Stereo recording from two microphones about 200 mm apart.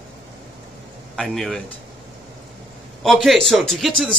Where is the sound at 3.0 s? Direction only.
Centre (ahead or behind).